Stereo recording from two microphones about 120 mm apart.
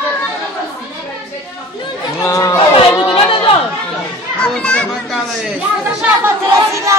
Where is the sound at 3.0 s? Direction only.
45° left (ahead or behind).